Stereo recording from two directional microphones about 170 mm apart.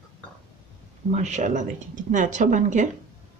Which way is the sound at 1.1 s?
45° right (ahead or behind).